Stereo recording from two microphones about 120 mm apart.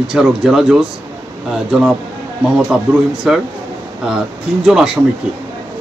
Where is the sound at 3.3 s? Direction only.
5° right (ahead or behind).